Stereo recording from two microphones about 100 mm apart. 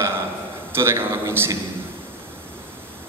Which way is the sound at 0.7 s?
25° right (ahead or behind).